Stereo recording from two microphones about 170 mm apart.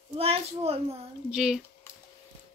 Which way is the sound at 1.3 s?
5° right (ahead or behind).